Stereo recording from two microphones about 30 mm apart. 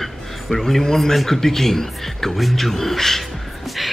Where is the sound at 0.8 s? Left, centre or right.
Centre.